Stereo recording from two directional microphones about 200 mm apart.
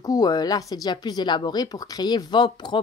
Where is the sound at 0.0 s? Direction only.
20° left (ahead or behind).